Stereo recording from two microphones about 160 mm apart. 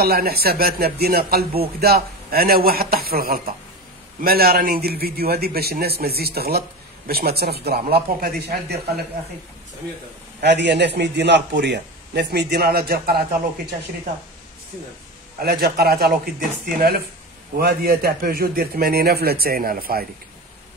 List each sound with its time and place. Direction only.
0.0 s a man's voice: 75° right (ahead or behind)
10.4 s a man's voice: 90° right; by 13.2 s 75° right (ahead or behind)
15.4 s a man's voice: 75° right (ahead or behind)